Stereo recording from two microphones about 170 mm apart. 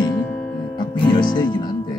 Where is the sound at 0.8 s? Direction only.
25° left (ahead or behind).